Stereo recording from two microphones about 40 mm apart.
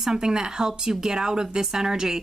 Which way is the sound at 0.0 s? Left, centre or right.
Centre.